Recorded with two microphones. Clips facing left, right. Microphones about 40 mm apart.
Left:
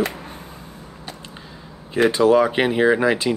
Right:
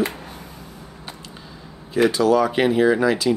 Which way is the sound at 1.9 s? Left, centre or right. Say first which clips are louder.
Left 2 dB; left.